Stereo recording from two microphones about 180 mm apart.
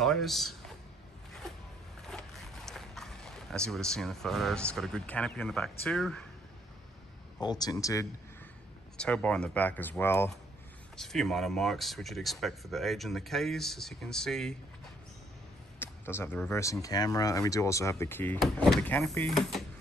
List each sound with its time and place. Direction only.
0.0 s a sound: centre (ahead or behind)
2.0 s speech: 5° left (ahead or behind)
7.4 s speech: 20° left (ahead or behind)
8.9 s speech: 5° left (ahead or behind)
11.0 s speech: centre (ahead or behind)
15.8 s speech: 10° left (ahead or behind)